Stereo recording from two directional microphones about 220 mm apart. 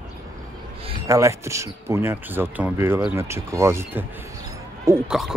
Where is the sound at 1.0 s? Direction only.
15° right (ahead or behind).